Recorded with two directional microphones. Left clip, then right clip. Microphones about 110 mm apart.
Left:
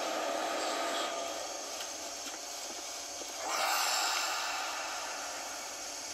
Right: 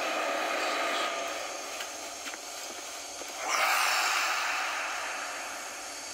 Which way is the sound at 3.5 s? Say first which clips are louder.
Right 5 dB; 5° left (ahead or behind).